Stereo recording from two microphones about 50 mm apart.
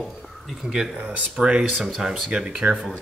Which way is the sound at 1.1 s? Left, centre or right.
Right.